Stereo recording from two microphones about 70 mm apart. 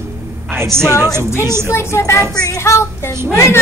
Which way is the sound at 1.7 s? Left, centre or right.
Left.